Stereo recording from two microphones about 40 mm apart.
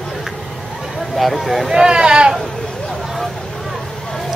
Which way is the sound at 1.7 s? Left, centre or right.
Right.